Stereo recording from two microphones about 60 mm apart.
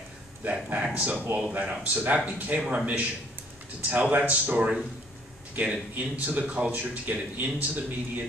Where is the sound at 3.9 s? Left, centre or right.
Right.